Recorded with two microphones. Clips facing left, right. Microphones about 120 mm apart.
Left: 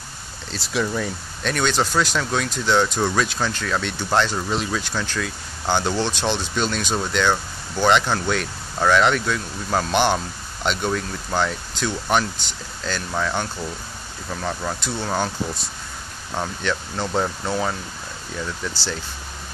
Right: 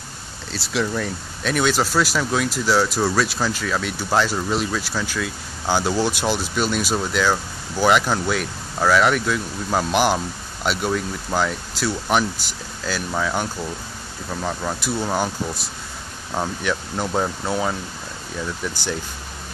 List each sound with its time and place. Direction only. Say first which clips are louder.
0.5 s speech: even; centre (ahead or behind)
16.3 s speech: right 1 dB; 10° right (ahead or behind)